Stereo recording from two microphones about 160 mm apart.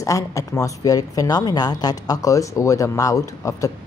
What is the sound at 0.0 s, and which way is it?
A woman's voice, 20° left (ahead or behind).